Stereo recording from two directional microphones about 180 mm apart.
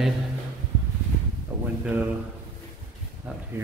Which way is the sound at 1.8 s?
10° right (ahead or behind).